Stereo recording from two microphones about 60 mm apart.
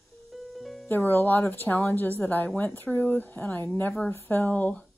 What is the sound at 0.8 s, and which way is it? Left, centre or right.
A woman's voice, left.